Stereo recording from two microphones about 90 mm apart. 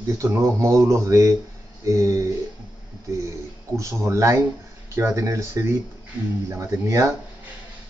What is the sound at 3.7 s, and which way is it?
Speech, 35° right (ahead or behind).